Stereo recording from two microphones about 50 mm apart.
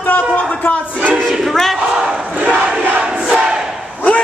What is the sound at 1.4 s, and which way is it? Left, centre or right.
Battle cry, centre.